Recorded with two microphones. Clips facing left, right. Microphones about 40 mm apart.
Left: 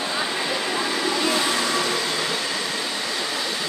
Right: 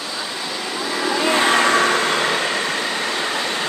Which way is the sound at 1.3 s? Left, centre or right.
Right.